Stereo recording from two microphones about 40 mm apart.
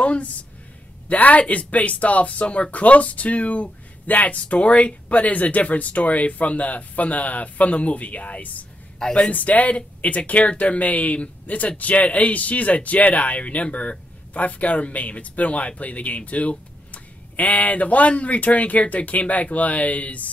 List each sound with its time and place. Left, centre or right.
0.0 s a woman's voice: left